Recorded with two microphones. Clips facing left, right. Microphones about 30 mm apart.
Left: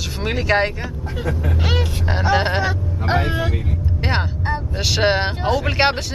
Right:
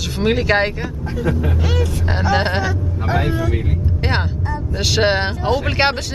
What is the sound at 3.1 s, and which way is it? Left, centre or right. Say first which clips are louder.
Speech: even; left.